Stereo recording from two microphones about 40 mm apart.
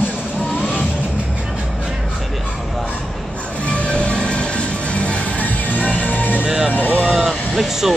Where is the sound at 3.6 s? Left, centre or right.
Left.